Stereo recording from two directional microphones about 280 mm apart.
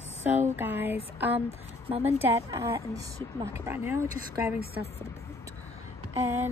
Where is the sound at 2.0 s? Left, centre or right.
Centre.